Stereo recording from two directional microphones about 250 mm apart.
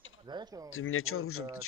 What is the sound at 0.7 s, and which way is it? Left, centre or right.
Speech, left.